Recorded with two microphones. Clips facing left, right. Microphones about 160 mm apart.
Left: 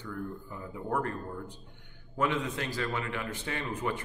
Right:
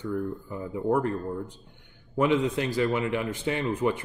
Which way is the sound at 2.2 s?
20° right (ahead or behind).